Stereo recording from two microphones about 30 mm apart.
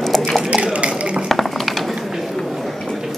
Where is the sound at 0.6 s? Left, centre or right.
Right.